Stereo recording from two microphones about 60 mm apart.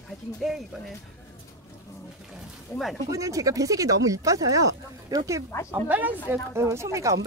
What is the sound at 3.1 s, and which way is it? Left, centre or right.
Speech, right.